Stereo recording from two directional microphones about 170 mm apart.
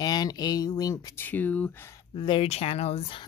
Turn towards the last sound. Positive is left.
turn(degrees=35)  # may be behind; listen again after turning